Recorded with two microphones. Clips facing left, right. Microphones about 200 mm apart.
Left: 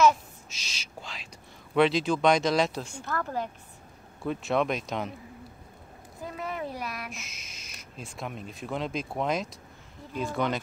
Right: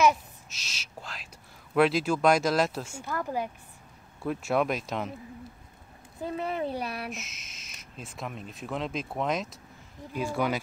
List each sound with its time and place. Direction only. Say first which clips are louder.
0.5 s speech: left 1 dB; centre (ahead or behind)
6.2 s a child's voice: right 4 dB; 30° right (ahead or behind)
7.1 s speech: right 4 dB; centre (ahead or behind)